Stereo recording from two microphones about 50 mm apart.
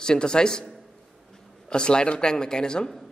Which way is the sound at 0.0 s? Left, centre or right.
Centre.